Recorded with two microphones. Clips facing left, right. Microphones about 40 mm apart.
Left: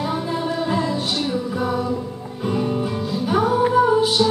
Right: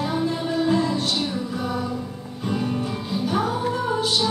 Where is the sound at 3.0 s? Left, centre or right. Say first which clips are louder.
Left 3 dB; centre.